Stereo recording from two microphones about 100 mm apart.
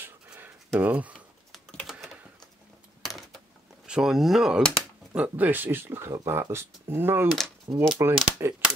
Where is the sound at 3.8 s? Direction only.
5° right (ahead or behind).